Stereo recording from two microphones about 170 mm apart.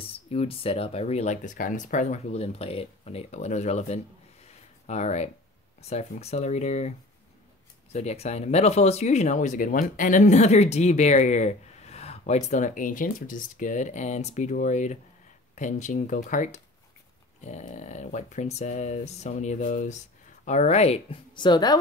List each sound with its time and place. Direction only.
0.1 s speech: 35° left (ahead or behind)
7.9 s speech: 40° left (ahead or behind)